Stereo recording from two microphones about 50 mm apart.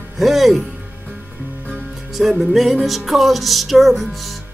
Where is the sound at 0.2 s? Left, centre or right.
Centre.